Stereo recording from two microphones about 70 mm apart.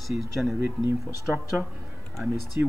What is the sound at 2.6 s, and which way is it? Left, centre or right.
Speech, right.